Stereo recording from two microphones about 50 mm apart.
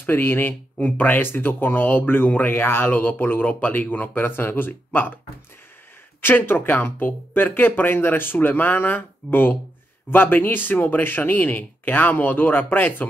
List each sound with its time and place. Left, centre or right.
0.0 s speech: left
6.2 s speech: left